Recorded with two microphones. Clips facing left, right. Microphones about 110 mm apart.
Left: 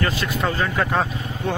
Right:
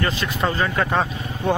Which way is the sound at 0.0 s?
10° left (ahead or behind).